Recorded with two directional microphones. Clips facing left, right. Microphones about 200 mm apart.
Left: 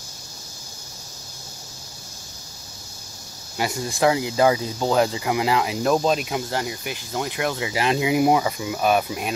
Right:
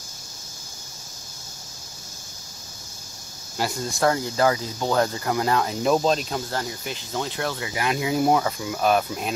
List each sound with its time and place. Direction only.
3.5 s speech: centre (ahead or behind)
4.0 s speech: 10° left (ahead or behind)
7.8 s speech: 25° left (ahead or behind)
8.1 s speech: 10° left (ahead or behind)